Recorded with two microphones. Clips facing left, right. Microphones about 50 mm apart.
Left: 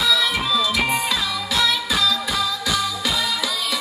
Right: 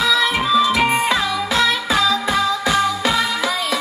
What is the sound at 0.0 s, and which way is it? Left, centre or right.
Music, right.